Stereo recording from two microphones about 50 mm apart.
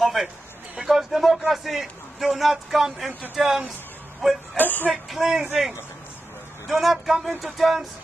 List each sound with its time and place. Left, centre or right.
0.0 s a man's voice: centre
4.6 s speech: left
4.9 s speech: centre
6.7 s speech: centre